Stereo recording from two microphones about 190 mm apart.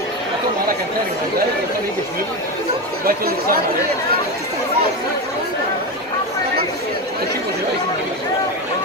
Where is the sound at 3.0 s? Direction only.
50° right (ahead or behind).